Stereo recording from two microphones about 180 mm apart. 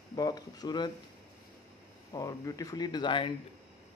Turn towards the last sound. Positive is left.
turn(degrees=25)  # may be behind; listen again after turning